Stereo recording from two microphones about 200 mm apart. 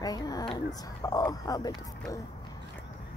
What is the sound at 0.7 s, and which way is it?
Speech, 15° left (ahead or behind).